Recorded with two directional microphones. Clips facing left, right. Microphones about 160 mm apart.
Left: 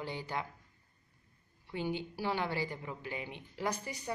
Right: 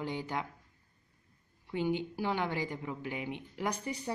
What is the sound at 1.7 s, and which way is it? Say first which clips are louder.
A woman's voice: right 4 dB; 15° right (ahead or behind).